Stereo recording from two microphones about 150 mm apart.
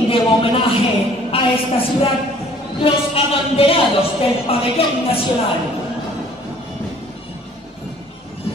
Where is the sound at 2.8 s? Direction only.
40° left (ahead or behind).